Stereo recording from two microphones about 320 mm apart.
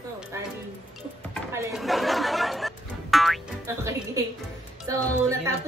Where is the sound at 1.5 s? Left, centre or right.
Centre.